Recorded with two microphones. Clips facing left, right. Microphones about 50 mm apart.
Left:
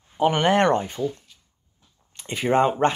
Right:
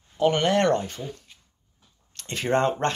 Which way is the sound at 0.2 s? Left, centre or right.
Centre.